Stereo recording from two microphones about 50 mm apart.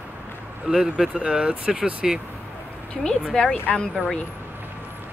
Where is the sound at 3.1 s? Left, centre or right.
Centre.